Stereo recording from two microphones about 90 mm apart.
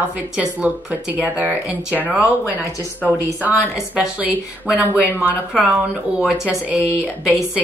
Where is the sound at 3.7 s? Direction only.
10° right (ahead or behind).